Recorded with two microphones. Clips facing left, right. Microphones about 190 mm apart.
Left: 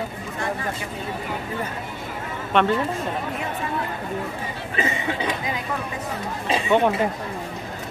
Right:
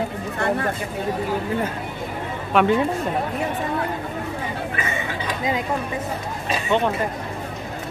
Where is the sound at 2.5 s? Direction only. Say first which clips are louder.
Right 2 dB; 10° right (ahead or behind).